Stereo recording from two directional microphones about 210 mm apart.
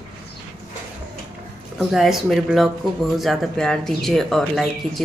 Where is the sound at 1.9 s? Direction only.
Centre (ahead or behind).